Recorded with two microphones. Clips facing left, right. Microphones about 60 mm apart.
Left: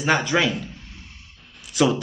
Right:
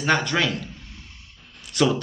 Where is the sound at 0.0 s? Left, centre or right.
Centre.